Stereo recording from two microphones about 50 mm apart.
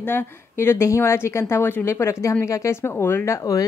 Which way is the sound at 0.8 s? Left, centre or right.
Left.